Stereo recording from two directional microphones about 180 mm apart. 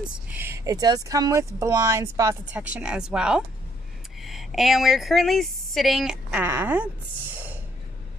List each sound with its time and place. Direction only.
0.0 s speech: 10° right (ahead or behind)
2.5 s speech: 5° right (ahead or behind)